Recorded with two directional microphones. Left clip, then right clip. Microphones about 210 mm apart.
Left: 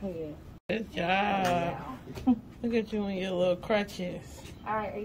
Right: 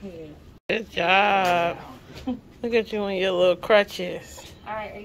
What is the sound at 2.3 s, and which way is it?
Speech, 50° left (ahead or behind).